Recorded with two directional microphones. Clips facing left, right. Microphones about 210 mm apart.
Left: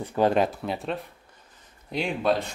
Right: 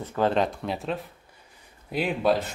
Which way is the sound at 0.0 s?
15° left (ahead or behind).